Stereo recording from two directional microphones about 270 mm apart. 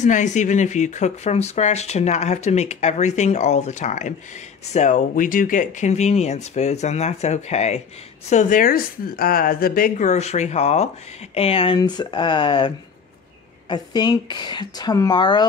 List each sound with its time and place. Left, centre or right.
0.0 s a woman's voice: left